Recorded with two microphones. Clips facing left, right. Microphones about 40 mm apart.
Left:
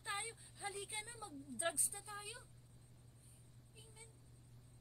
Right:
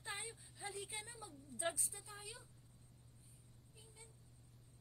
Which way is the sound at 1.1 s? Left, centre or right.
Centre.